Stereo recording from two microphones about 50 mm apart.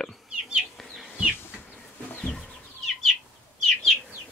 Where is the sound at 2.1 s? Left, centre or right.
Left.